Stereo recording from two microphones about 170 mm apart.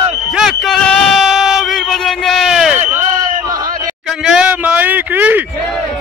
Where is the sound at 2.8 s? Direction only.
50° right (ahead or behind).